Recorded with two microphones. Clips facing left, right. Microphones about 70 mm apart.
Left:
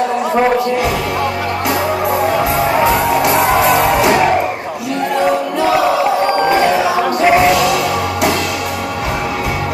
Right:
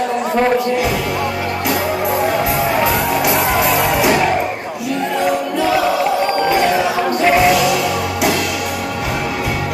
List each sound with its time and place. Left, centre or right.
0.4 s music: centre
3.2 s music: centre
3.4 s music: centre
7.2 s music: centre